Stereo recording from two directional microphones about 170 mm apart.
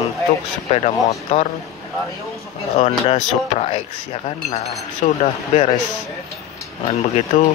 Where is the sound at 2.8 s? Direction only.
40° left (ahead or behind).